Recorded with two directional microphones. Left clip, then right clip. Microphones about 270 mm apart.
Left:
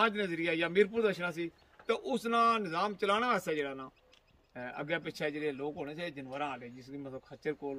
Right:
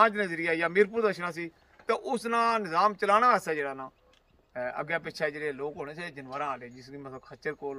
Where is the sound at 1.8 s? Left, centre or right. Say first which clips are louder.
Right 4 dB; right.